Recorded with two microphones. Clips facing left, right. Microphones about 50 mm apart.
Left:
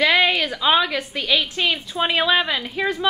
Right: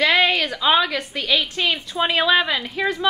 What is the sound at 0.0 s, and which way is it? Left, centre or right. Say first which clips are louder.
A woman's voice: even; centre.